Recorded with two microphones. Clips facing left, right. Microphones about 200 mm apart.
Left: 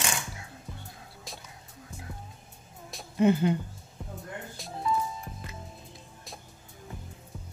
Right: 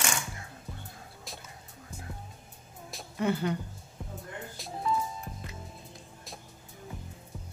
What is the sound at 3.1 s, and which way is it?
Speech, 20° left (ahead or behind).